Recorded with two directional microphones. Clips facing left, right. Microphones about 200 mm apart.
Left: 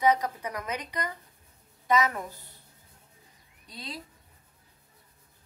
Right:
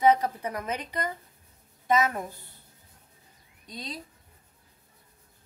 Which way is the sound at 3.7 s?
20° right (ahead or behind).